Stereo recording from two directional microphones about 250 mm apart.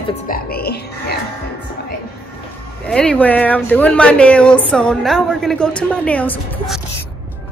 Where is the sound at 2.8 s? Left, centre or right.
Centre.